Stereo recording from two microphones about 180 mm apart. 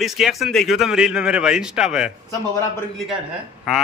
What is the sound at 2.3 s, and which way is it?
Speech, 15° left (ahead or behind).